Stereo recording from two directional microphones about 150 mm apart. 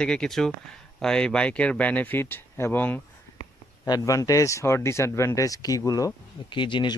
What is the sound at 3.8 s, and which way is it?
Speech, 25° left (ahead or behind).